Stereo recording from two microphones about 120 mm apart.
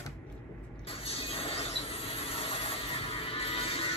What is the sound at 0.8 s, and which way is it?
Mechanisms, 55° left (ahead or behind).